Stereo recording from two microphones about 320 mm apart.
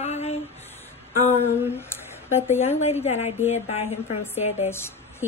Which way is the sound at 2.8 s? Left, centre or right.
Centre.